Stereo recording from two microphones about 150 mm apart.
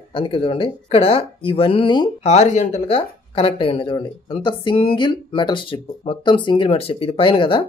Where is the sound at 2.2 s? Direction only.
50° left (ahead or behind).